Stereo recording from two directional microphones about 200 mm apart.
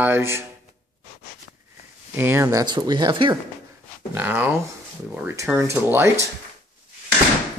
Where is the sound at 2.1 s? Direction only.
10° right (ahead or behind).